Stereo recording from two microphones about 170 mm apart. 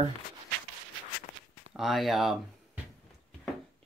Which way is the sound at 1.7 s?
Centre (ahead or behind).